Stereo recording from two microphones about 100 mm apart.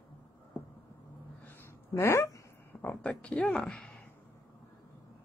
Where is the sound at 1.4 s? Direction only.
20° left (ahead or behind).